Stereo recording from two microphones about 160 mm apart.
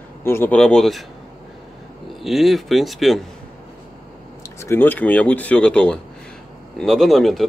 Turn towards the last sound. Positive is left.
turn(degrees=0)  # may be behind; listen again after turning